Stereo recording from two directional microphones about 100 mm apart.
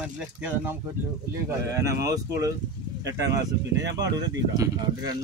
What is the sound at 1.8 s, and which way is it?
Speech, 30° right (ahead or behind).